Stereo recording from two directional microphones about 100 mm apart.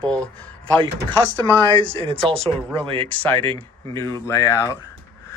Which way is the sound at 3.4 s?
65° right (ahead or behind).